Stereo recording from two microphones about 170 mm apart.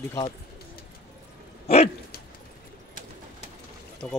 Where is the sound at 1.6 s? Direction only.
35° left (ahead or behind).